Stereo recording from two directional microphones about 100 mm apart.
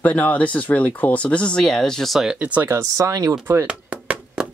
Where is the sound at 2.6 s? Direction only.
30° right (ahead or behind).